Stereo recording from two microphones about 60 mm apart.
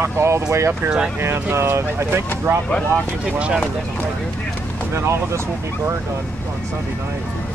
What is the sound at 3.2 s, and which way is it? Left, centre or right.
Speech, centre.